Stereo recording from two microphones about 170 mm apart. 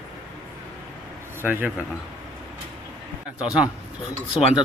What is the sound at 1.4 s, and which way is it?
Speech, 10° right (ahead or behind).